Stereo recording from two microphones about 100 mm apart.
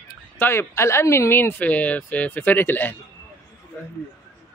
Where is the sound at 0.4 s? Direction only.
25° left (ahead or behind).